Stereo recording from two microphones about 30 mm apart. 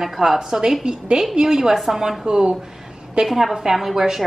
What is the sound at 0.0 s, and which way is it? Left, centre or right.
Speech, centre.